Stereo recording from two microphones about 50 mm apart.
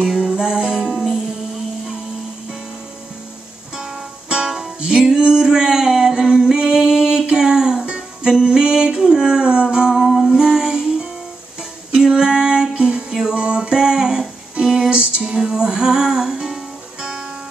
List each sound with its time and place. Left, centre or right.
0.2 s music: centre
0.9 s music: centre
4.3 s music: centre
11.9 s female singing: centre
12.7 s music: right